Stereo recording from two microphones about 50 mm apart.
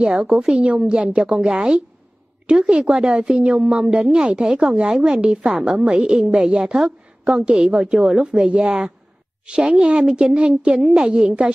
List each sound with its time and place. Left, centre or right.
0.0 s a woman's voice: centre